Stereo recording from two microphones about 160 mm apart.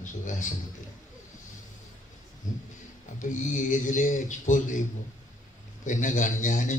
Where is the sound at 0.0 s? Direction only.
50° left (ahead or behind).